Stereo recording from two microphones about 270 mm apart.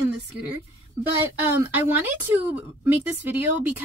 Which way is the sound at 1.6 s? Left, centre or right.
Centre.